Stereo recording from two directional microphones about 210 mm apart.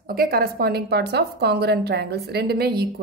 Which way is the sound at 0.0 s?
45° right (ahead or behind).